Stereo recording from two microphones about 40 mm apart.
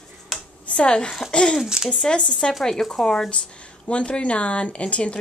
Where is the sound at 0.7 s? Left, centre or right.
Left.